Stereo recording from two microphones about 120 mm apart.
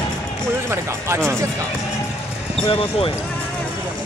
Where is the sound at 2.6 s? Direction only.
50° left (ahead or behind).